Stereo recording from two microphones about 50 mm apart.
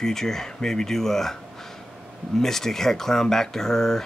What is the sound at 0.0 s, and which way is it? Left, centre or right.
Speech, centre.